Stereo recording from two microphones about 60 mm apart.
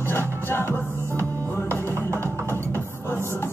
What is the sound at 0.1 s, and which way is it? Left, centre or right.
Music, left.